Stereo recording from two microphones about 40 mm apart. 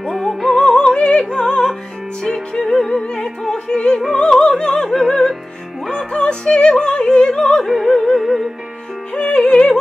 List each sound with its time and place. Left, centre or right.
0.1 s music: centre
0.5 s opera: centre
2.2 s music: centre
3.2 s opera: centre
4.9 s music: centre
7.6 s opera: centre
7.9 s music: centre
9.1 s music: left